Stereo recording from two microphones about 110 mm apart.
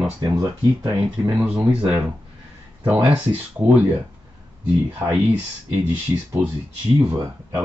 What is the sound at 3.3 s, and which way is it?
Speech, 15° right (ahead or behind).